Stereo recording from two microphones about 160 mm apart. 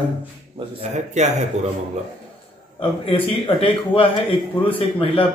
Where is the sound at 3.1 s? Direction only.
35° left (ahead or behind).